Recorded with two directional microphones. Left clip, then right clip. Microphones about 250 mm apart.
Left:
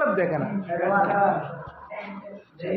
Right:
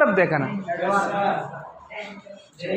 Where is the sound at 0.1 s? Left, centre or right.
Right.